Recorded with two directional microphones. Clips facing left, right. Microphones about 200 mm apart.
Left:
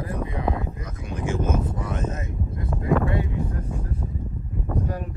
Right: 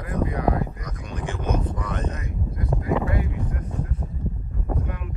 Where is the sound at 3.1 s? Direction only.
30° left (ahead or behind).